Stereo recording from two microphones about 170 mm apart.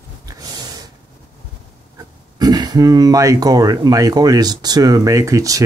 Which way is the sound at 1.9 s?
25° right (ahead or behind).